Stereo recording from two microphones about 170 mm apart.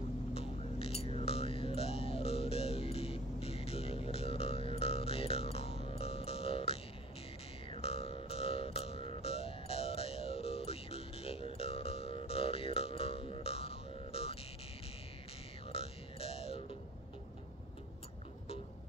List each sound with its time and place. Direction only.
0.3 s music: 35° left (ahead or behind)
15.7 s burping: 35° left (ahead or behind)